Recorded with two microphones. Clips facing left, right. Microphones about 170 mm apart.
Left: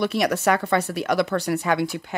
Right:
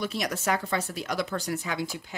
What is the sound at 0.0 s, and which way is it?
Speech, 65° left (ahead or behind).